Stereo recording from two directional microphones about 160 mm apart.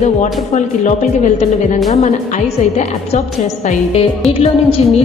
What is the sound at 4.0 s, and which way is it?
Speech, 40° left (ahead or behind).